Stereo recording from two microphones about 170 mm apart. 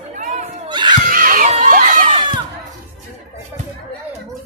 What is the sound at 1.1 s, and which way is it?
Crowd, 55° right (ahead or behind).